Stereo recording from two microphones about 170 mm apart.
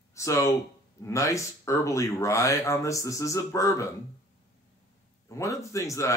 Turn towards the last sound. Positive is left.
turn(degrees=20)  # may be behind; listen again after turning